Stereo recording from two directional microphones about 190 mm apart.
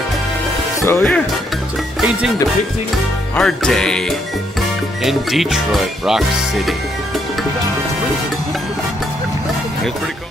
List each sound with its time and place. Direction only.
0.7 s speech: 10° left (ahead or behind)
2.0 s music: centre (ahead or behind)
3.3 s music: 5° left (ahead or behind)